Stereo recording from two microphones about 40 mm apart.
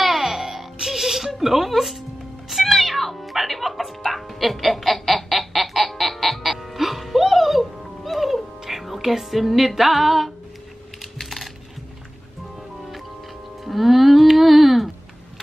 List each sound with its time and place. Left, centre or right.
0.0 s music: centre
11.0 s typing: centre
13.7 s music: centre